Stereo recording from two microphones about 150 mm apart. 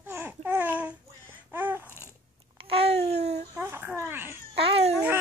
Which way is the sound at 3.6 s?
15° right (ahead or behind).